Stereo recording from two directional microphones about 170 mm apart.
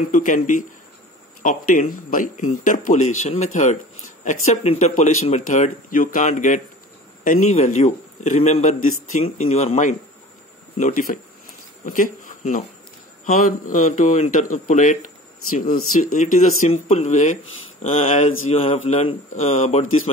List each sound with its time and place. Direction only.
0.1 s a man's voice: 50° left (ahead or behind)